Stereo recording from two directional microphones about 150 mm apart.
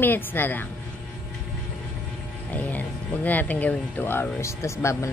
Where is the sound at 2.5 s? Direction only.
10° left (ahead or behind).